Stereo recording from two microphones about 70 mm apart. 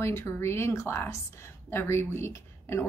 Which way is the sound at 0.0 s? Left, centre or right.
Left.